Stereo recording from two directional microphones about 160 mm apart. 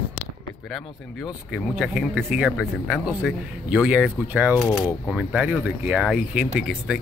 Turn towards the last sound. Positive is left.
turn(degrees=-5)  # may be behind; listen again after turning